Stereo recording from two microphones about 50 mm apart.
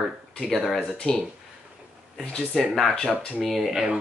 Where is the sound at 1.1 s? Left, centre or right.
Centre.